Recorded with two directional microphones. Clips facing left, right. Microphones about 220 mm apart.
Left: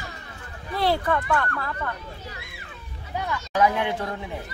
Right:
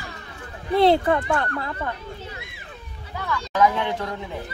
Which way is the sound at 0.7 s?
25° right (ahead or behind).